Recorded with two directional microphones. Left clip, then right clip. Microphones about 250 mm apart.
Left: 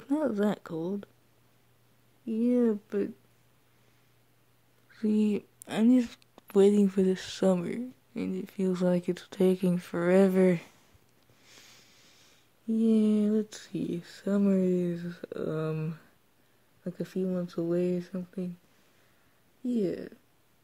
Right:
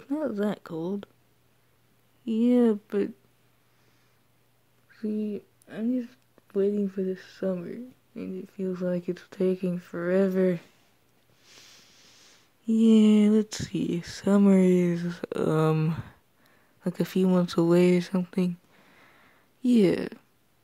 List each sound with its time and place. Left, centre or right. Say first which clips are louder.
0.0 s speech: even; centre
2.2 s speech: right 4 dB; centre
4.9 s speech: left 3 dB; centre
11.4 s a sound: right 3 dB; centre
12.6 s speech: right 5 dB; centre
19.6 s speech: right 8 dB; right